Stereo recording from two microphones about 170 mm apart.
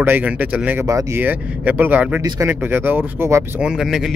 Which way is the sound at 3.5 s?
5° right (ahead or behind).